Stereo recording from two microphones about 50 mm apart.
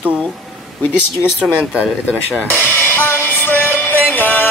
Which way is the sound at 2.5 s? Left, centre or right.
Left.